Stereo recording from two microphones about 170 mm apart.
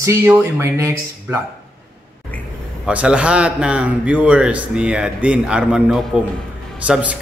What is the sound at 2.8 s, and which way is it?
A man's voice, 5° right (ahead or behind).